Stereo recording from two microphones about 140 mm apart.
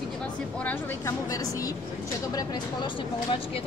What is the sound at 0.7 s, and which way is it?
A woman's voice, 20° left (ahead or behind).